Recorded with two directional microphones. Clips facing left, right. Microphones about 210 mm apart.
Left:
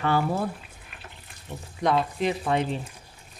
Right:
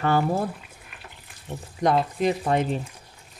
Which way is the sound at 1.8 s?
45° right (ahead or behind).